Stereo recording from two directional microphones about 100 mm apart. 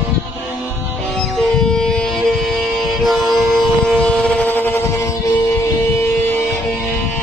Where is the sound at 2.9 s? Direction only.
Centre (ahead or behind); by 4.8 s 20° left (ahead or behind).